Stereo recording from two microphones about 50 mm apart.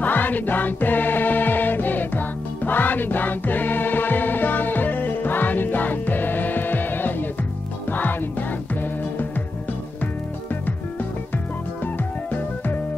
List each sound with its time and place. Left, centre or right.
0.0 s music: left
11.3 s music: left